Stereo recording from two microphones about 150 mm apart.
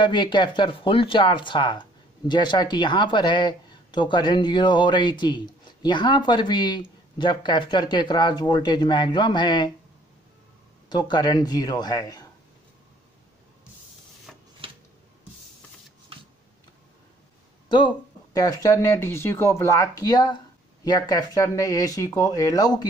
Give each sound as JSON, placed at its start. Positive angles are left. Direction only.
{"t": 0.0, "sound": "speech", "side_deg": 30}
{"t": 10.9, "sound": "speech", "side_deg": 30}
{"t": 14.6, "sound": "a sound", "side_deg": -35}
{"t": 17.6, "sound": "speech", "side_deg": 30}